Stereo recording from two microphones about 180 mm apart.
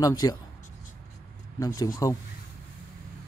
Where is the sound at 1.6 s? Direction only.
20° left (ahead or behind).